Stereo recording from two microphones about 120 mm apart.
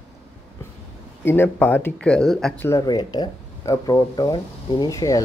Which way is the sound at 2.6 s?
20° left (ahead or behind).